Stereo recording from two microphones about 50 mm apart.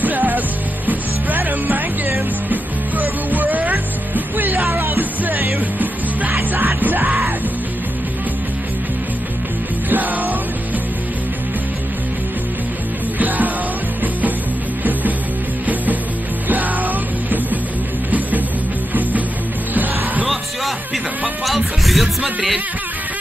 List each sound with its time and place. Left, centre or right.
0.0 s music: right
9.8 s music: right
16.4 s music: right
19.7 s music: right
21.5 s music: centre